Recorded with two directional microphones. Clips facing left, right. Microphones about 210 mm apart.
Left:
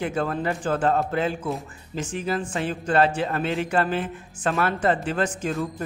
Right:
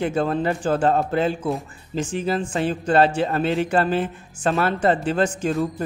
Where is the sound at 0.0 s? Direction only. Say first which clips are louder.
Right 4 dB; 30° right (ahead or behind).